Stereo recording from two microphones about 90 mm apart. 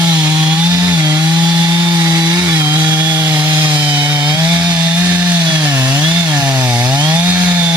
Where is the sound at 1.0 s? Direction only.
50° right (ahead or behind).